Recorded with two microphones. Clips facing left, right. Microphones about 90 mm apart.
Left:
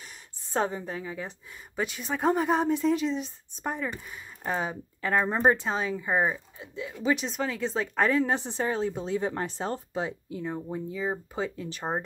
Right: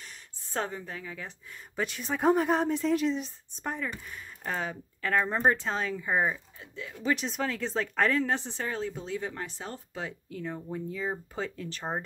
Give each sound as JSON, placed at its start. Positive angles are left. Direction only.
{"t": 0.0, "sound": "gasp", "side_deg": 15}
{"t": 1.8, "sound": "speech", "side_deg": 5}
{"t": 3.6, "sound": "speech", "side_deg": 10}
{"t": 7.0, "sound": "speech", "side_deg": 5}
{"t": 9.3, "sound": "speech", "side_deg": 35}
{"t": 9.9, "sound": "speech", "side_deg": 20}